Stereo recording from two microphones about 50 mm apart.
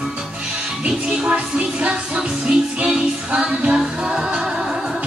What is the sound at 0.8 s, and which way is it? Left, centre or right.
Music, centre.